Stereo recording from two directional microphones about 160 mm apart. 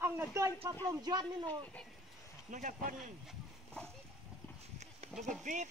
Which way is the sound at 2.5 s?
55° right (ahead or behind).